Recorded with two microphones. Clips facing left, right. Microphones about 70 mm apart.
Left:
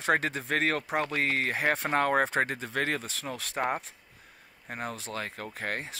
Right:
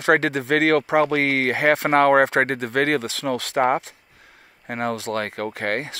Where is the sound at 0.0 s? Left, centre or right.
Right.